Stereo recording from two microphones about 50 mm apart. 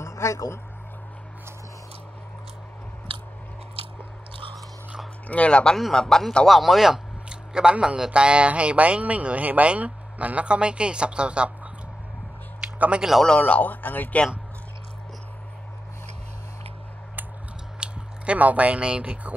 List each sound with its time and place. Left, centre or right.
0.0 s speech: left
5.3 s a man's voice: left
6.4 s speech: centre
7.2 s speech: centre
12.7 s speech: right
13.4 s speech: left
17.7 s speech: right